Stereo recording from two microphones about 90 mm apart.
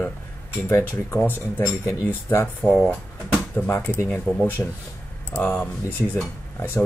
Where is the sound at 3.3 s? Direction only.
20° left (ahead or behind).